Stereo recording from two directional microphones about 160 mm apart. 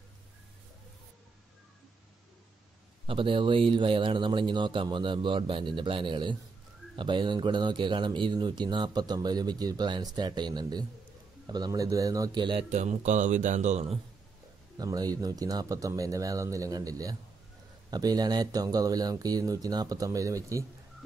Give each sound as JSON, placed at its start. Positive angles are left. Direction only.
{"t": 3.1, "sound": "speech", "side_deg": -30}
{"t": 12.6, "sound": "speech", "side_deg": -45}
{"t": 14.8, "sound": "speech", "side_deg": -25}